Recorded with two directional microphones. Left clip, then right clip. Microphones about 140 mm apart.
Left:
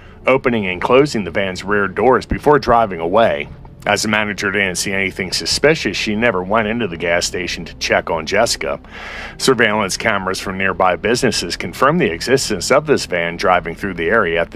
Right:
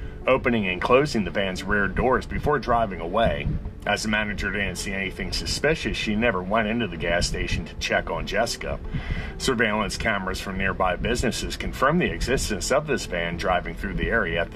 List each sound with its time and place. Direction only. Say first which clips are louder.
0.2 s speech: left 7 dB; 35° left (ahead or behind)